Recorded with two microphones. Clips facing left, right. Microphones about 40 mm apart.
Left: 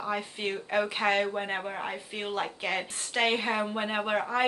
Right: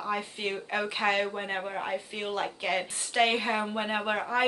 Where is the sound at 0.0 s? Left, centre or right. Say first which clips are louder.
Even; centre.